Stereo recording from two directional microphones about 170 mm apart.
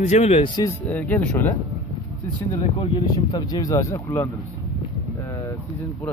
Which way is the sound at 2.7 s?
25° left (ahead or behind).